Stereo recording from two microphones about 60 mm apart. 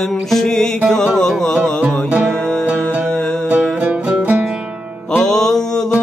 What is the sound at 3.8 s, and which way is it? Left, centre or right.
Music, right.